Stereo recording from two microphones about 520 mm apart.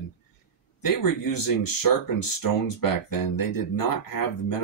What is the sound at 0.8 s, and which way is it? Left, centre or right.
Speech, left.